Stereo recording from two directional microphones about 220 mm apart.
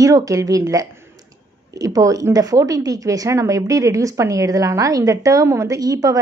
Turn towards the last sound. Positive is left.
turn(degrees=-15)  # may be behind; listen again after turning